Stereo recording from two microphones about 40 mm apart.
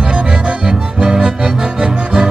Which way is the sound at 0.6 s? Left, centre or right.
Centre.